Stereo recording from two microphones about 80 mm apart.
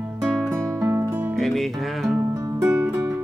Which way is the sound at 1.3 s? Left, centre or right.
Centre.